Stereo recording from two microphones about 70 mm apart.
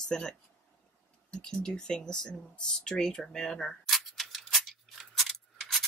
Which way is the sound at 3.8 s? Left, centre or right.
Centre.